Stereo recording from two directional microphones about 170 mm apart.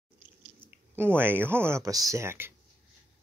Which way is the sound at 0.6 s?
15° right (ahead or behind).